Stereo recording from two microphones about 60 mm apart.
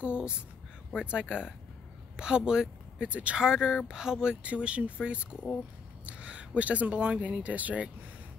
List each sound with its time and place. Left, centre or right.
0.0 s speech: centre
3.3 s speech: centre